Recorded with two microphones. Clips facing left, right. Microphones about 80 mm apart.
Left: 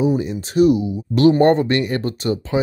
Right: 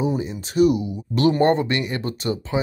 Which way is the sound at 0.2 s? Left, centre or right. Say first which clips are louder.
Left 3 dB; left.